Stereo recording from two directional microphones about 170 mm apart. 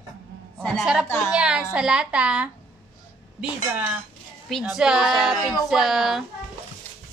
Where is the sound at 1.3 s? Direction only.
5° right (ahead or behind).